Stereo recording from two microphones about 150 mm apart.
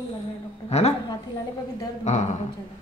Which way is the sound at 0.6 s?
45° left (ahead or behind).